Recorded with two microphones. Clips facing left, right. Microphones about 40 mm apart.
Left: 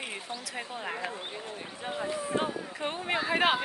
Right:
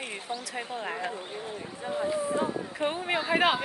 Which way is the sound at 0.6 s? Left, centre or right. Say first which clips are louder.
Right 1 dB; centre.